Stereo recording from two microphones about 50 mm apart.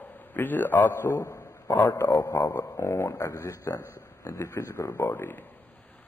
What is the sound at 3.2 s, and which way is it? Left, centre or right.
Speech, left.